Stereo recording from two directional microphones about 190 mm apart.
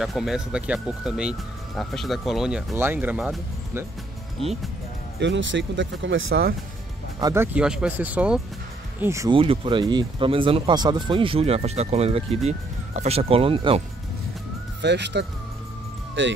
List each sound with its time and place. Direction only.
0.0 s speech: centre (ahead or behind)
5.2 s speech: 70° right (ahead or behind); by 6.4 s 90° right
7.2 s speech: 20° right (ahead or behind)
7.5 s speech: 5° right (ahead or behind)
9.3 s speech: 25° right (ahead or behind)
14.8 s speech: 65° right (ahead or behind)
16.2 s speech: 80° right